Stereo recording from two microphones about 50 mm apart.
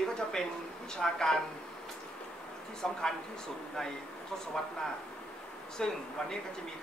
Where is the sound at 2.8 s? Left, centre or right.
Centre.